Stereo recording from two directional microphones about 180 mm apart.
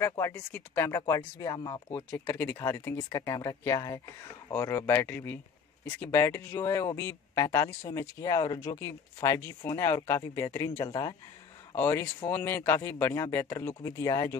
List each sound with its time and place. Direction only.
0.0 s speech: 15° left (ahead or behind)
1.9 s speech: 10° left (ahead or behind)